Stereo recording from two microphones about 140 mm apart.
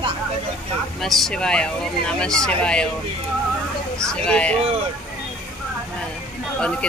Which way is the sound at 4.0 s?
5° left (ahead or behind).